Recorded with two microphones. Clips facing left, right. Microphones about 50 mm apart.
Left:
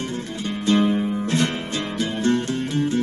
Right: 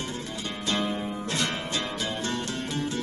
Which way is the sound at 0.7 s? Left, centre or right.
Centre.